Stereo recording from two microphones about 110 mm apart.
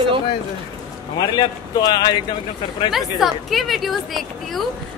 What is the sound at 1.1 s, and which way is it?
A man's voice, 40° left (ahead or behind).